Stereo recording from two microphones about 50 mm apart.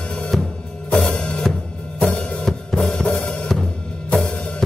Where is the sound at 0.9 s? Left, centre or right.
Centre.